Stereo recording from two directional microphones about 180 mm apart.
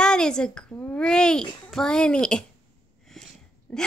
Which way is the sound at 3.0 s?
Centre (ahead or behind).